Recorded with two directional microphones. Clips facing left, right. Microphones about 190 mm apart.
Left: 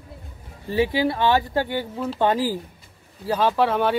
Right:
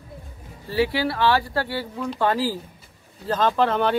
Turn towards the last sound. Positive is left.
turn(degrees=5)  # may be behind; listen again after turning